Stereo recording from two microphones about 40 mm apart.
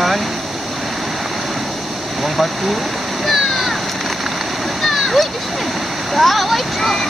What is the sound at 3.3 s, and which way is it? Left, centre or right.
Splash, centre.